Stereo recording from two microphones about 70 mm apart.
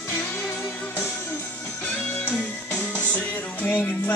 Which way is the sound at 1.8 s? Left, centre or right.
Left.